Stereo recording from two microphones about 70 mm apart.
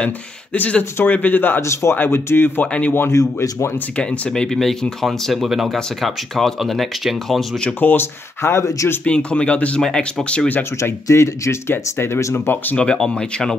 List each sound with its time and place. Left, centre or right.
0.0 s speech: centre
1.6 s speech: left
3.1 s speech: left
3.9 s speech: centre
4.3 s speech: centre
7.8 s speech: left
9.0 s speech: centre
10.8 s speech: left
12.6 s speech: centre